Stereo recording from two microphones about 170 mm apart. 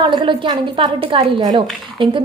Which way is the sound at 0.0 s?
30° right (ahead or behind).